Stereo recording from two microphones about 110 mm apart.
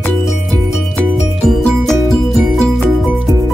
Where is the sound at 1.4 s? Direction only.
Centre (ahead or behind).